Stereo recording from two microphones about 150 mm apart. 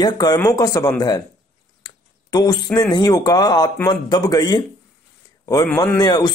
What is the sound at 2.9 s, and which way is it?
A man's voice, 25° left (ahead or behind).